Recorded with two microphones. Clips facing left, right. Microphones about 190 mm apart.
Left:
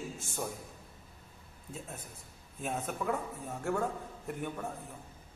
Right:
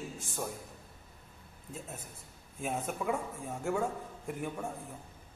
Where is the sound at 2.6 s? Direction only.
5° right (ahead or behind).